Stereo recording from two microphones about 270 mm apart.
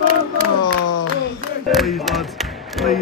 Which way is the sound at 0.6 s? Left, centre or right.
Left.